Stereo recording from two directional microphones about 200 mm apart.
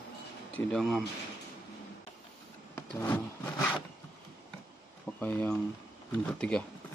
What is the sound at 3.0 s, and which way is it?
Wood, 15° left (ahead or behind).